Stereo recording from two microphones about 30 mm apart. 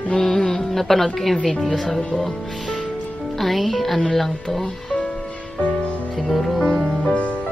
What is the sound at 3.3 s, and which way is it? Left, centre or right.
Speech, centre.